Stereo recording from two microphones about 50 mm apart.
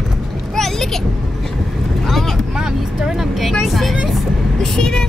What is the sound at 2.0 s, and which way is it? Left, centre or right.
Vehicle, centre.